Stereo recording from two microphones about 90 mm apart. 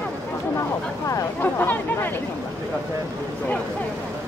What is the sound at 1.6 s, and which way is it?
Chatter, 20° left (ahead or behind).